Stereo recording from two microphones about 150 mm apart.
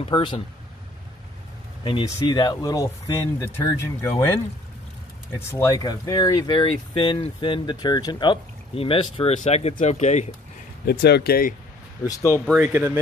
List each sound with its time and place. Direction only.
0.0 s speech: 35° left (ahead or behind)
1.9 s speech: 30° left (ahead or behind)
5.5 s speech: 20° left (ahead or behind); by 9.3 s 35° left (ahead or behind)
9.3 s speech: 50° left (ahead or behind)
10.9 s speech: 90° left
12.0 s speech: 25° left (ahead or behind)
12.5 s speech: 10° right (ahead or behind)